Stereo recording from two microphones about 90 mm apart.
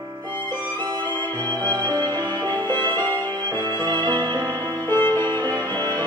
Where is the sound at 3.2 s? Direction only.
45° right (ahead or behind).